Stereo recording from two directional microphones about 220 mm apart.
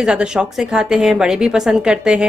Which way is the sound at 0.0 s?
5° right (ahead or behind).